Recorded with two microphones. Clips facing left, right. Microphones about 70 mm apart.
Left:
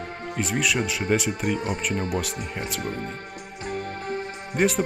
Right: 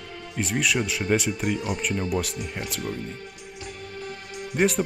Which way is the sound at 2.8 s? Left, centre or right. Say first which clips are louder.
Left 1 dB; left.